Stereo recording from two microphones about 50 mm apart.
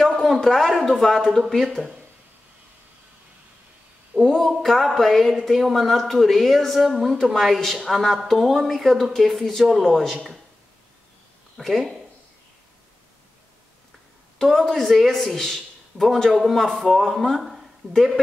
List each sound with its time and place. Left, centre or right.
0.0 s a man's voice: centre
4.2 s speech: centre
11.5 s speech: centre
14.4 s speech: centre